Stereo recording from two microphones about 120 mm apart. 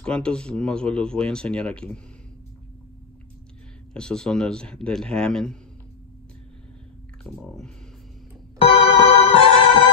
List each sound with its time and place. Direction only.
0.0 s speech: 10° left (ahead or behind)
3.9 s a man's voice: 5° left (ahead or behind)
7.2 s a man's voice: 5° left (ahead or behind)
8.5 s music: 55° left (ahead or behind)